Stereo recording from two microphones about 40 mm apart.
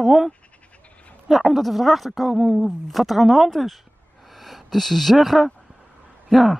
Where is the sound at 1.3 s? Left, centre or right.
Centre.